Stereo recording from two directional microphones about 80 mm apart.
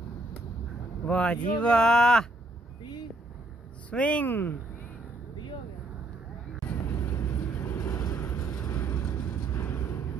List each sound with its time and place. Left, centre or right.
1.0 s speech: centre
3.9 s speech: centre
7.0 s vehicle: left